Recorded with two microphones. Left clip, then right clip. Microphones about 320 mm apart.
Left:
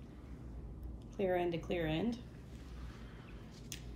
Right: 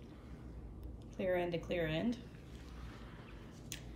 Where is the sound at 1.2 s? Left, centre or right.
Centre.